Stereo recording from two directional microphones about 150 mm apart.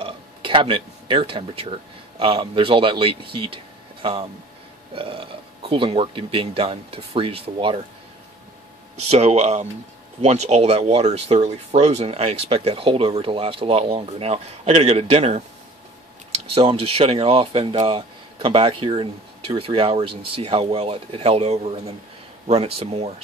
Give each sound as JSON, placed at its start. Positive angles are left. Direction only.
{"t": 0.0, "sound": "a sound", "side_deg": -35}
{"t": 2.1, "sound": "speech", "side_deg": -35}
{"t": 9.1, "sound": "speech", "side_deg": -45}
{"t": 16.5, "sound": "speech", "side_deg": -40}